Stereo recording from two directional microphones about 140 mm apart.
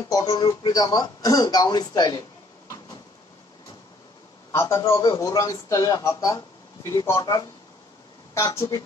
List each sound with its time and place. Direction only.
0.1 s speech: 30° left (ahead or behind)
4.5 s speech: 20° left (ahead or behind)